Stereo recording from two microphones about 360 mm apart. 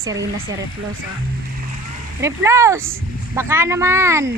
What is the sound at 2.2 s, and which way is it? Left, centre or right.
A woman's voice, centre.